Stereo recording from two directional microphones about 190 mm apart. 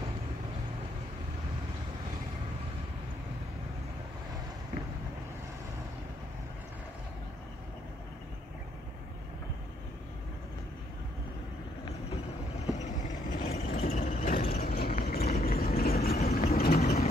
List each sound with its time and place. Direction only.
13.4 s vehicle: 35° left (ahead or behind)
13.7 s vehicle: 45° left (ahead or behind)
16.2 s vehicle: 35° left (ahead or behind)
16.4 s vehicle: 55° left (ahead or behind)